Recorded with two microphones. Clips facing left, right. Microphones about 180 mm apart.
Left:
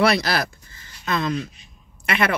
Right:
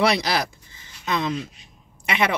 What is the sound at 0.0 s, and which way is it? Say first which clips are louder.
A woman's voice: left 1 dB; 20° right (ahead or behind).